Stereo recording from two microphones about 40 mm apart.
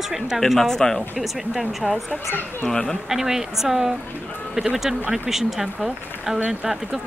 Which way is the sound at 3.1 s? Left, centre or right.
Centre.